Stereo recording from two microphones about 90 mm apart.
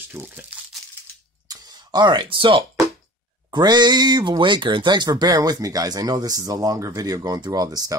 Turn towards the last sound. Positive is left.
turn(degrees=-45)  # may be behind; listen again after turning